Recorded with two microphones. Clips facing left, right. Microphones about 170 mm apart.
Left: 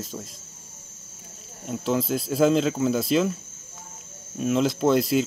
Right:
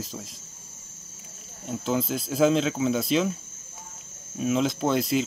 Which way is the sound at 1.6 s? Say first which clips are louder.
Left 2 dB; centre (ahead or behind).